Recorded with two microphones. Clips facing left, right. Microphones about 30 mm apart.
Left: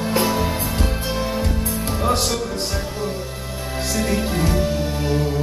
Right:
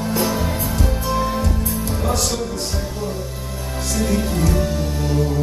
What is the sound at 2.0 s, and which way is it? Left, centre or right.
Music, left.